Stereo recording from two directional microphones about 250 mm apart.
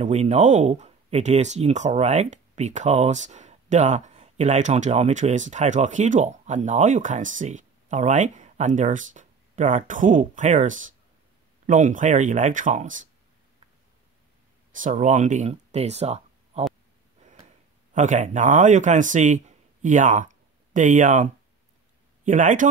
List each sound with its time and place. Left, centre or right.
0.0 s speech: right
14.7 s speech: right
17.2 s a sound: right
17.9 s a man's voice: right